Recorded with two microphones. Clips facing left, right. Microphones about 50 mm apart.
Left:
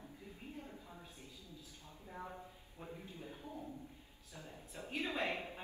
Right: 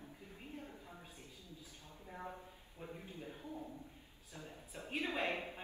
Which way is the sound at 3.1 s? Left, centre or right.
Right.